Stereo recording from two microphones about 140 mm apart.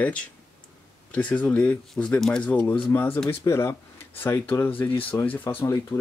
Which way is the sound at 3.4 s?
20° left (ahead or behind).